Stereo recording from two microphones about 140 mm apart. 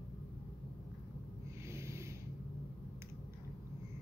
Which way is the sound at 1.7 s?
20° right (ahead or behind).